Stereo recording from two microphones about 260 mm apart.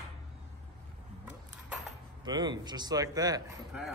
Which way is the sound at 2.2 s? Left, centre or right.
Centre.